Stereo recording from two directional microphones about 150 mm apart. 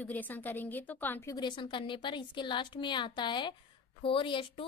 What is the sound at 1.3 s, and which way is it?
A woman's voice, 30° left (ahead or behind).